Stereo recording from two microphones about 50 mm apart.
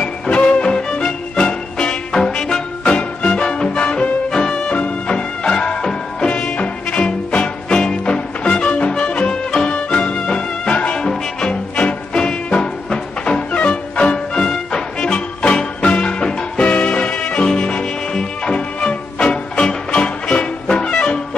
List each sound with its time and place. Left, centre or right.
0.0 s music: left